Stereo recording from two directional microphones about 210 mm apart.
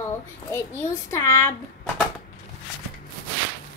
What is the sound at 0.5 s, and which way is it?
A child's voice, 10° left (ahead or behind).